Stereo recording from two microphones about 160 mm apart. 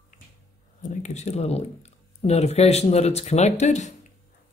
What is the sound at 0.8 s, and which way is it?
Speech, 50° left (ahead or behind).